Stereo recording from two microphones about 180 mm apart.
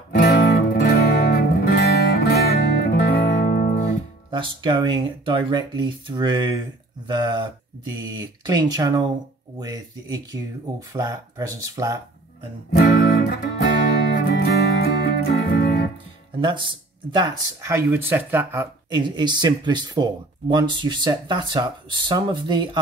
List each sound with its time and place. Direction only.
0.2 s music: 60° left (ahead or behind)
4.3 s speech: 25° right (ahead or behind)
12.7 s music: 60° left (ahead or behind)
16.3 s speech: 25° right (ahead or behind); by 18.7 s 10° right (ahead or behind)
18.9 s speech: 25° right (ahead or behind)